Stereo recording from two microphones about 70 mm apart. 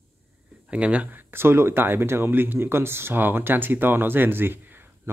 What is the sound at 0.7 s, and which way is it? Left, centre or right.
Speech, centre.